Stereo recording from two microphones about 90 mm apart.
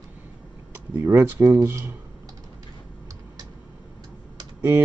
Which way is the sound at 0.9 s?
30° right (ahead or behind).